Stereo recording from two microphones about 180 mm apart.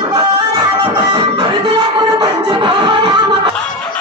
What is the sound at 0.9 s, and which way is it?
Music, 25° right (ahead or behind).